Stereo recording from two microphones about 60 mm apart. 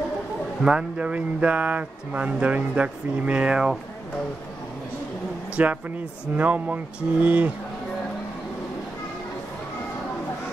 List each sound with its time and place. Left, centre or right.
0.7 s speech: centre
5.6 s speech: right